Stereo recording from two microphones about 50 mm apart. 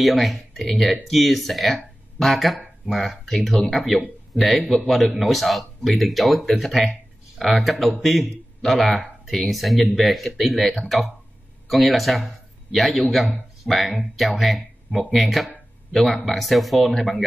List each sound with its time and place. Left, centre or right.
0.0 s speech: centre